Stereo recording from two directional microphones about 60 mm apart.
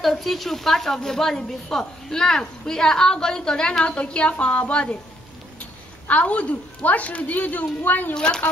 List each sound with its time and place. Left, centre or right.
0.0 s a woman's voice: centre
6.0 s a woman's voice: left
8.1 s a woman's voice: centre